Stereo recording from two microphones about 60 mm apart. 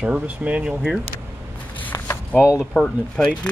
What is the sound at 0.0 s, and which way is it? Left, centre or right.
Speech, right.